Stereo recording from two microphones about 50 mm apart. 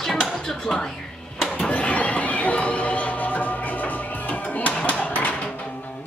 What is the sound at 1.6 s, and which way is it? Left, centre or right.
Music, left.